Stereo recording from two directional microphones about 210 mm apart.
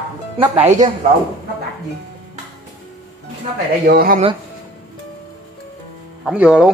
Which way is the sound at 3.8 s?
40° right (ahead or behind).